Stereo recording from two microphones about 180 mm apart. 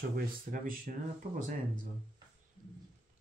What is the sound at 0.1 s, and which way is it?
Speech, 50° right (ahead or behind).